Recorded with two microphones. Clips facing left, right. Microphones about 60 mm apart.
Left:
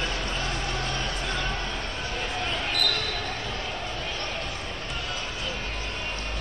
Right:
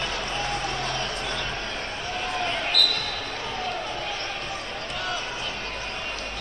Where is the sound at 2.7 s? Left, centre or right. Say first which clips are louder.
Right 3 dB; right.